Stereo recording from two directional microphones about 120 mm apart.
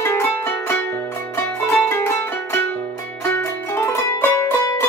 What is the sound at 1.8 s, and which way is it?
Music, 20° left (ahead or behind).